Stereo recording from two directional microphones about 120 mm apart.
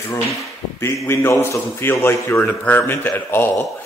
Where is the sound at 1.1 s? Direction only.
20° left (ahead or behind).